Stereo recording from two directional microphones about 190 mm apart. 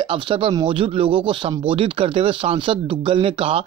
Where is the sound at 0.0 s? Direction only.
25° right (ahead or behind).